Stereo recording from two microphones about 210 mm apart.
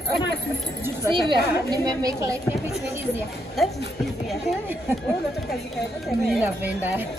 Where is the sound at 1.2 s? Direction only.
20° right (ahead or behind).